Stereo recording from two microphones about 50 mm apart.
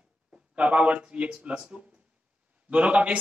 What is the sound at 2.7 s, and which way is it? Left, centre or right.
Speech, right.